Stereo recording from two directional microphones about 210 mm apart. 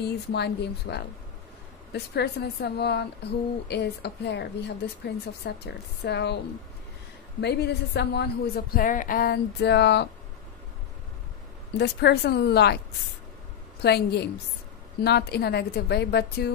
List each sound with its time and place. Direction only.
0.0 s a woman's voice: 50° left (ahead or behind)
11.8 s a woman's voice: 50° left (ahead or behind)
13.8 s a woman's voice: 50° left (ahead or behind)